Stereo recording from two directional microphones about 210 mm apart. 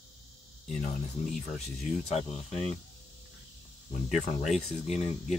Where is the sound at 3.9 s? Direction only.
35° left (ahead or behind).